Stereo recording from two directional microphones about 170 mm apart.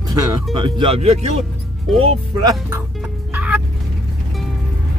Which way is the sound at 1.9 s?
Centre (ahead or behind).